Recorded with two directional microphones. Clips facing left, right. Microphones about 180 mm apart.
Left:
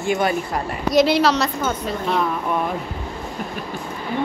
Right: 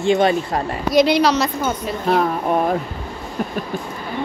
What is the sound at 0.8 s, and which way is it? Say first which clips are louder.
Speech: right 1 dB; centre (ahead or behind).